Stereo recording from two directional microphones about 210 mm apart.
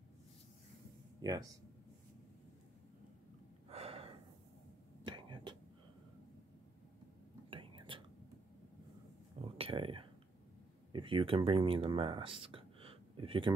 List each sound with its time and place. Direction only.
1.2 s speech: 15° right (ahead or behind)
3.6 s gasp: 30° right (ahead or behind)
5.0 s a sound: 20° right (ahead or behind)
7.4 s whispering: 25° right (ahead or behind)
9.4 s a sound: 25° right (ahead or behind)
10.9 s speech: 25° right (ahead or behind)